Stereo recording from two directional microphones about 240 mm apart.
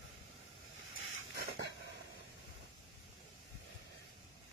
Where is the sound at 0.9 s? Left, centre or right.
Left.